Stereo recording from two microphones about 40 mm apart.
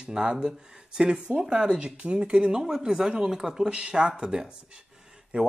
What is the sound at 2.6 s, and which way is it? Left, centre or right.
Speech, centre.